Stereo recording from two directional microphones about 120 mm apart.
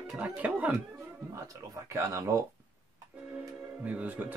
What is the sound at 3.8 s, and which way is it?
Speech, 15° right (ahead or behind).